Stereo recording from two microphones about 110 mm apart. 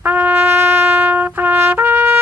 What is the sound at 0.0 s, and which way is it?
Trumpet, 15° right (ahead or behind).